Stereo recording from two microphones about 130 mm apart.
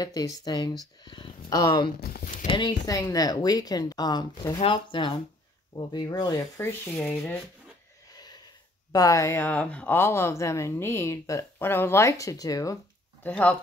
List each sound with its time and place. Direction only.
0.0 s speech: 30° left (ahead or behind)
6.6 s speech: 15° left (ahead or behind)
8.2 s a sound: 30° left (ahead or behind)
8.9 s speech: 25° left (ahead or behind)
13.2 s speech: 10° left (ahead or behind)